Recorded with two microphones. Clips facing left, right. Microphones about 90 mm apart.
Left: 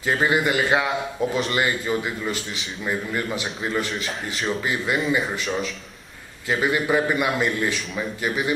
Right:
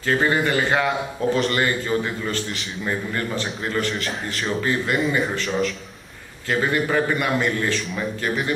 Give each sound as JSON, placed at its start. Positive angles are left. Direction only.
{"t": 0.0, "sound": "a man's voice", "side_deg": 15}
{"t": 6.6, "sound": "a man's voice", "side_deg": 15}